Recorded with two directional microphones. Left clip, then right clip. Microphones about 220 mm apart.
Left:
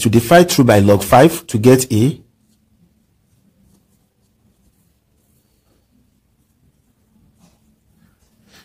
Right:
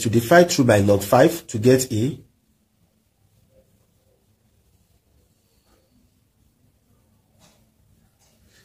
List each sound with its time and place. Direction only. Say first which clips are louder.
0.0 s speech: left 4 dB; 40° left (ahead or behind)